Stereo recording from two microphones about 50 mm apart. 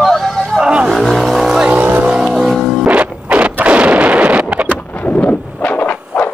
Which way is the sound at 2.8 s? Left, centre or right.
Right.